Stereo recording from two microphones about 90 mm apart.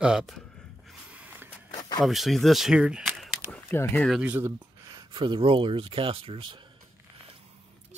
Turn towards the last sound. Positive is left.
turn(degrees=-90)